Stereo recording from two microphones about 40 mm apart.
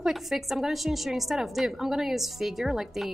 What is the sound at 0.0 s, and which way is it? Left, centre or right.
A woman's voice, centre.